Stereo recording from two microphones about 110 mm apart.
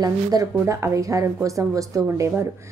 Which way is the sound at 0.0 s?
35° right (ahead or behind).